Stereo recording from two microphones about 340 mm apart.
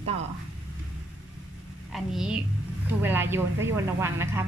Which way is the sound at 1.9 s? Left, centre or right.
Centre.